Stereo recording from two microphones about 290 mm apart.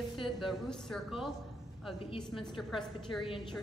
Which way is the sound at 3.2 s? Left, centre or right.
Centre.